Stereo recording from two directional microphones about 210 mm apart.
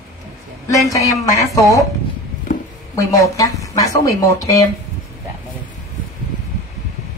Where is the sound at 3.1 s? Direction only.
15° left (ahead or behind).